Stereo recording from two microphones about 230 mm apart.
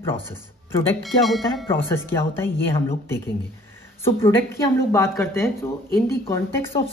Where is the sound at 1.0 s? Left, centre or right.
Centre.